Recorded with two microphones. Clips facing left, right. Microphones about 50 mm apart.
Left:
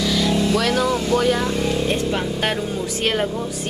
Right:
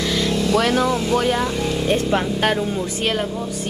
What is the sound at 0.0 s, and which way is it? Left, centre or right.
Vehicle, centre.